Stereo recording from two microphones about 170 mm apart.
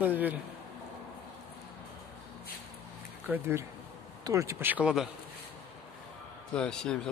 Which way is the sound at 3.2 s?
10° right (ahead or behind).